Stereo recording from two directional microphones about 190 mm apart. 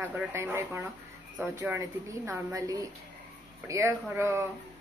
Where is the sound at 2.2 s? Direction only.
15° right (ahead or behind).